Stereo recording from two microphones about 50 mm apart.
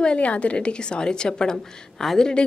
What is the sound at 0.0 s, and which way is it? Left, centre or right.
A woman's voice, left.